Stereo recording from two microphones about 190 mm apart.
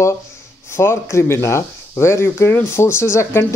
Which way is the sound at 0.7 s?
15° left (ahead or behind).